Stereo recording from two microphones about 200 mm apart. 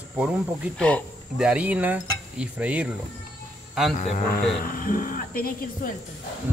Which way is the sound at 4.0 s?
40° left (ahead or behind).